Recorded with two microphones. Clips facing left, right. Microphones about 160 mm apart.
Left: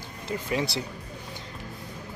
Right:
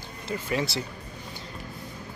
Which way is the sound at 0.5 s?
20° left (ahead or behind).